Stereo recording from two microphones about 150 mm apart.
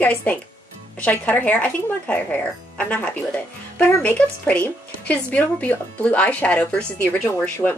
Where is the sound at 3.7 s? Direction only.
10° left (ahead or behind).